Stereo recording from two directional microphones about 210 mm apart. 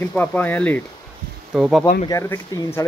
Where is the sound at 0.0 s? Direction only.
10° left (ahead or behind).